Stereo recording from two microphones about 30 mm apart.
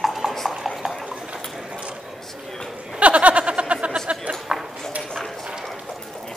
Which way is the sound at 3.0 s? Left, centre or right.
Right.